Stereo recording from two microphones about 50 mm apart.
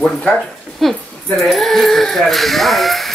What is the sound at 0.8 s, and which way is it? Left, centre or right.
Speech, centre.